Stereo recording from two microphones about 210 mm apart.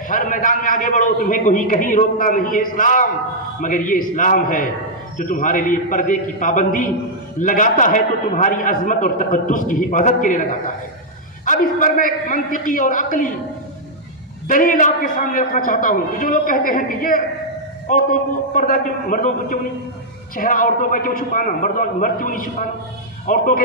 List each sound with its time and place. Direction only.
0.1 s a man's voice: 40° left (ahead or behind)
11.4 s a man's voice: 40° left (ahead or behind)
14.5 s a man's voice: 40° left (ahead or behind)
18.5 s a man's voice: 40° left (ahead or behind)